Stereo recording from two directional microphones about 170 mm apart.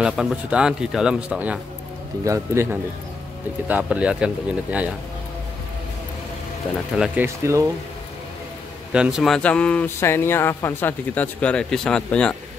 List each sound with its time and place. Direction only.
0.0 s a man's voice: 5° right (ahead or behind)
2.2 s a man's voice: 15° right (ahead or behind)
7.2 s a man's voice: 15° right (ahead or behind)
8.9 s speech: 5° right (ahead or behind)